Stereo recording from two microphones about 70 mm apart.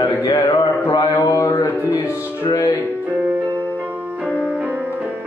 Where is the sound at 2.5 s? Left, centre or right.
Left.